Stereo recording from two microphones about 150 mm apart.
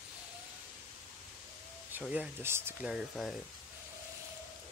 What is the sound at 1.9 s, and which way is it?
Speech, 10° right (ahead or behind).